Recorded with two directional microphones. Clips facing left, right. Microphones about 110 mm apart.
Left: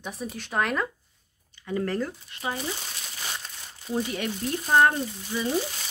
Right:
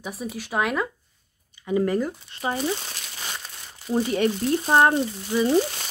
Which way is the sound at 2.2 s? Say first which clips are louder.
Right 4 dB; 25° right (ahead or behind).